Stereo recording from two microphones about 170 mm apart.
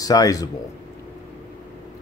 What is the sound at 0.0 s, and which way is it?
Speech, 20° left (ahead or behind).